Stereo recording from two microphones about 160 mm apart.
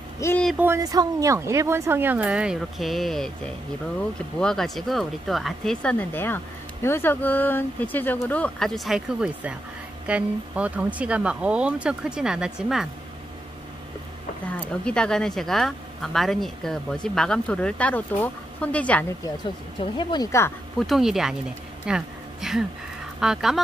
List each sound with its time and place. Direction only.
0.2 s speech: 20° left (ahead or behind)
0.6 s speech: 15° right (ahead or behind); by 3.3 s centre (ahead or behind)
4.4 s speech: 5° left (ahead or behind)
14.6 s speech: 5° left (ahead or behind)
19.2 s speech: 30° left (ahead or behind)
20.2 s speech: 15° left (ahead or behind)
20.8 s speech: centre (ahead or behind)